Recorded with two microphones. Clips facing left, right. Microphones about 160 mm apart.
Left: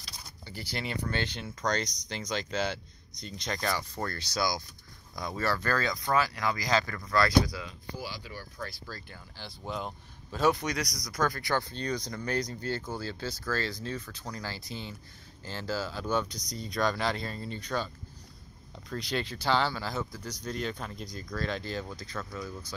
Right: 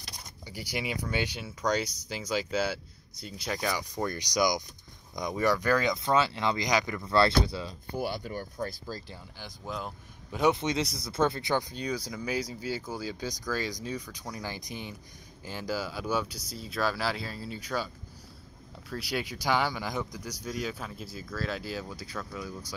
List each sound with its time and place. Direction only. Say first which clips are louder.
0.5 s speech: right 2 dB; 10° right (ahead or behind)
7.1 s speech: right 1 dB; 30° right (ahead or behind)
7.9 s speech: right 8 dB; 55° right (ahead or behind)
8.4 s speech: right 6 dB; 20° right (ahead or behind)
9.7 s speech: left 1 dB; centre (ahead or behind)
10.3 s speech: right 1 dB; 20° right (ahead or behind)